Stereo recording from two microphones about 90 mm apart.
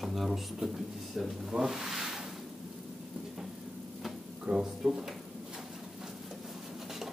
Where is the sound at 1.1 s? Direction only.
5° right (ahead or behind).